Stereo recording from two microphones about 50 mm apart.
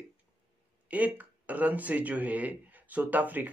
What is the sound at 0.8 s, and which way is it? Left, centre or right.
Speech, right.